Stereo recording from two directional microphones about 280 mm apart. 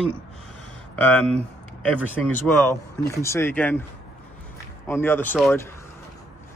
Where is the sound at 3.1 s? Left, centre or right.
Centre.